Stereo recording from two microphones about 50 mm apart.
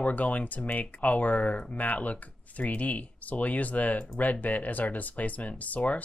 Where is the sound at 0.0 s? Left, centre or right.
Left.